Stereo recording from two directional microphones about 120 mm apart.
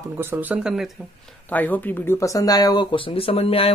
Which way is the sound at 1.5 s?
15° left (ahead or behind).